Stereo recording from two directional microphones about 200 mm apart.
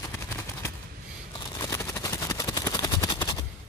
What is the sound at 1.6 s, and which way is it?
Helicopter, 15° left (ahead or behind).